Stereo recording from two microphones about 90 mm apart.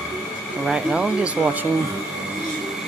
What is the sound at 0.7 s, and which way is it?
Speech, 10° right (ahead or behind).